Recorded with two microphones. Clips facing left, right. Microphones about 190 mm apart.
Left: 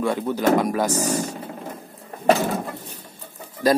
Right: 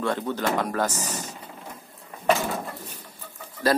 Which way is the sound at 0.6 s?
10° left (ahead or behind).